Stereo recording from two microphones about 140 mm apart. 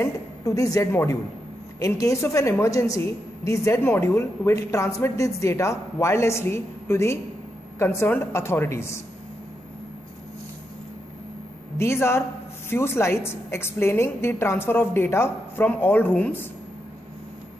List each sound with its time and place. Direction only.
0.0 s a woman's voice: 20° left (ahead or behind)
11.8 s a woman's voice: 20° left (ahead or behind)